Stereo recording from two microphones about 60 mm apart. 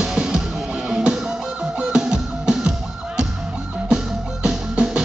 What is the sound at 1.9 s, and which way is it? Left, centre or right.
Music, centre.